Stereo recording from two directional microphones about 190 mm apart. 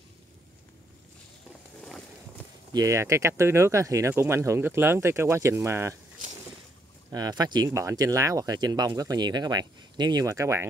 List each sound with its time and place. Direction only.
2.7 s speech: 15° right (ahead or behind)
7.1 s speech: 20° right (ahead or behind)